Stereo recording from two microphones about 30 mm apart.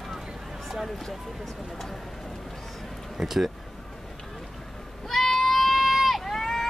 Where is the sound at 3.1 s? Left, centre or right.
Centre.